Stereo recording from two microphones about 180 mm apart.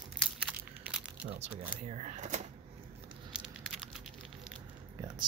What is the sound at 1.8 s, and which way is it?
Speech, 40° right (ahead or behind).